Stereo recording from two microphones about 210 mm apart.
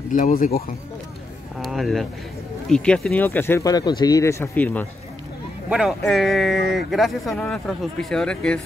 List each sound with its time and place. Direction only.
0.1 s speech: 40° left (ahead or behind)
1.6 s speech: centre (ahead or behind)
5.7 s speech: centre (ahead or behind)